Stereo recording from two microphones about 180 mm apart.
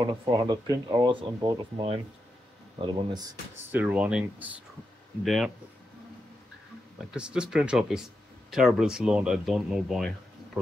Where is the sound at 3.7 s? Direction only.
5° right (ahead or behind).